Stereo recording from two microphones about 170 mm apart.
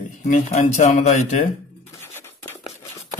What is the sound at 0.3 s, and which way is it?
Speech, 40° left (ahead or behind).